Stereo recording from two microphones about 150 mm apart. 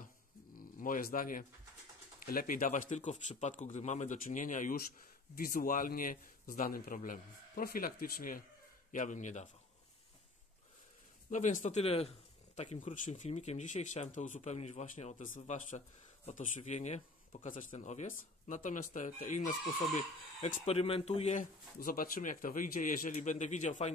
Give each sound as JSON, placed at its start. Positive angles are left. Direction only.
{"t": 0.6, "sound": "a man's voice", "side_deg": 65}
{"t": 8.9, "sound": "speech", "side_deg": 55}
{"t": 11.2, "sound": "speech", "side_deg": 55}
{"t": 12.5, "sound": "speech", "side_deg": 55}
{"t": 21.7, "sound": "speech", "side_deg": 70}